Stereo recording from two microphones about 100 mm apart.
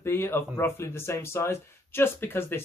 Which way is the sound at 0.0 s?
25° left (ahead or behind).